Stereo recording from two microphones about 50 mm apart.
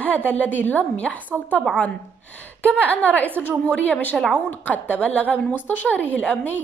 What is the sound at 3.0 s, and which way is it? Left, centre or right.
A woman's voice, left.